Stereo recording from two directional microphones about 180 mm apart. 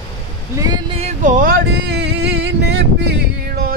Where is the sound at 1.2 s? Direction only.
50° right (ahead or behind); by 3.7 s 65° right (ahead or behind).